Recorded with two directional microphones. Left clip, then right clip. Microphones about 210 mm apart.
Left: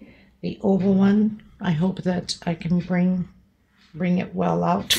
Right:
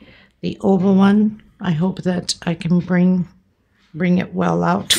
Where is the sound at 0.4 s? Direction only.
35° right (ahead or behind).